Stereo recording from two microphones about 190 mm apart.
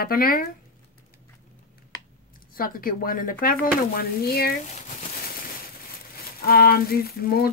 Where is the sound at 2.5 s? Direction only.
50° left (ahead or behind).